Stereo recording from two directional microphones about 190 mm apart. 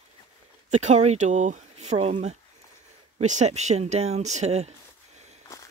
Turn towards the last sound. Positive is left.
turn(degrees=-35)  # may be behind; listen again after turning